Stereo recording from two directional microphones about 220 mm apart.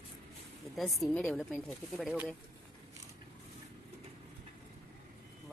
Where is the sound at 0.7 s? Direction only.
Centre (ahead or behind).